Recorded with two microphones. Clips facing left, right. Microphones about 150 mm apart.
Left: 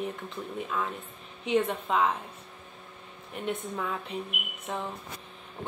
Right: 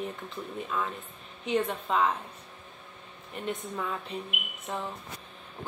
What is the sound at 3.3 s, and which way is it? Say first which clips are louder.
A woman's voice: left 1 dB; centre (ahead or behind).